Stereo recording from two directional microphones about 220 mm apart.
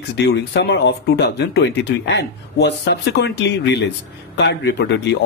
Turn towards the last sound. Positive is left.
turn(degrees=50)  # may be behind; listen again after turning